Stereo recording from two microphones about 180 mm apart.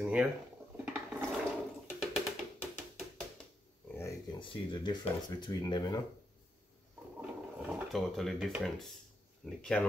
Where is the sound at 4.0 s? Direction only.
25° left (ahead or behind).